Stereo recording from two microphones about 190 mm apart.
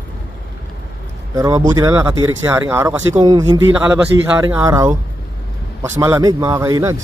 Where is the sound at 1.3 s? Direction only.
15° right (ahead or behind).